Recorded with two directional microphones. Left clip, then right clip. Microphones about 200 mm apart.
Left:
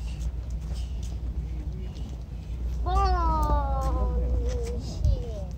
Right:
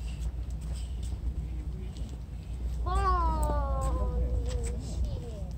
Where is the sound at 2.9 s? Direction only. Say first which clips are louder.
Left 3 dB; 45° left (ahead or behind).